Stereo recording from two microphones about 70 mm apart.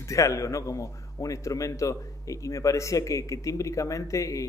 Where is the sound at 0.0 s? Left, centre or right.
Left.